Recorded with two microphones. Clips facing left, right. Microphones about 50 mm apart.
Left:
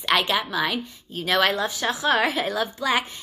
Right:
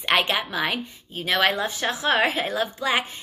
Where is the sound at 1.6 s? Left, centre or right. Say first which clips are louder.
Left 1 dB; right.